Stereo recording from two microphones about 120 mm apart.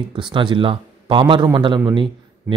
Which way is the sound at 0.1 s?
45° right (ahead or behind).